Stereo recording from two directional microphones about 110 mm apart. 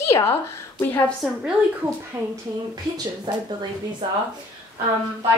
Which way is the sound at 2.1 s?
25° right (ahead or behind).